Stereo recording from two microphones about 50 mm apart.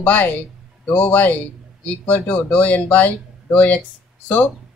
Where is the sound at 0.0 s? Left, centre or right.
Left.